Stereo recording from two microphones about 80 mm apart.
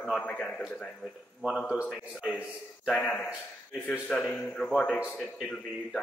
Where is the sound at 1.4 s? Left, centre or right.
Centre.